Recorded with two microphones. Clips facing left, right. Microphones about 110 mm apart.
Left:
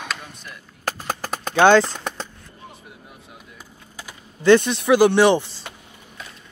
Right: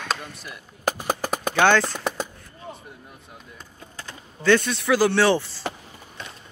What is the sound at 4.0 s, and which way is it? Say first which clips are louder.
Speech: even; 15° left (ahead or behind).